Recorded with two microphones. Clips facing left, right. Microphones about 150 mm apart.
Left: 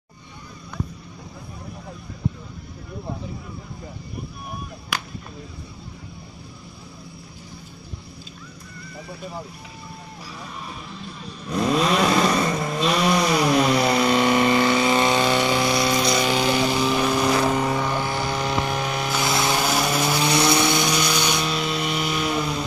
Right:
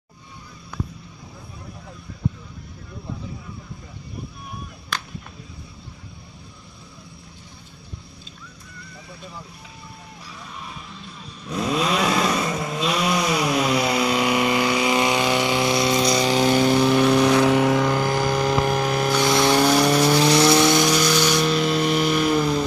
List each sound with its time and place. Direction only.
4.9 s whip: 10° left (ahead or behind)
11.0 s vehicle: centre (ahead or behind); by 16.1 s 20° right (ahead or behind)
16.1 s a sound: 35° right (ahead or behind); by 17.3 s 65° right (ahead or behind)
17.5 s vehicle: 80° right
18.0 s vehicle: 45° right (ahead or behind)
19.1 s vehicle: 5° left (ahead or behind)
20.7 s vehicle: 25° left (ahead or behind)
21.4 s music: 40° right (ahead or behind)